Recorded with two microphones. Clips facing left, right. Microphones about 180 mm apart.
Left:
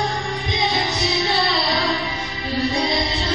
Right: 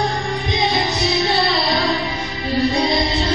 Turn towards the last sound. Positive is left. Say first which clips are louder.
# right 4 dB
turn(degrees=-50)  # may be behind; listen again after turning